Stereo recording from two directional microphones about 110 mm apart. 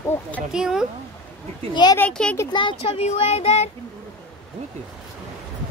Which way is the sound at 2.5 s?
50° left (ahead or behind).